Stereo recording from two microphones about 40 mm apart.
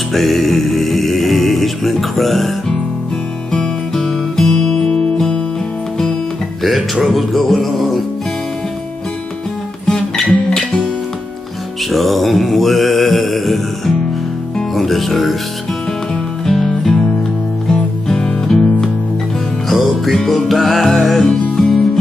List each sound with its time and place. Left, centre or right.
0.1 s music: centre
3.5 s music: centre
7.1 s music: centre
9.8 s music: centre
11.9 s mantra: centre
14.8 s speech: centre
16.4 s music: centre
19.7 s music: centre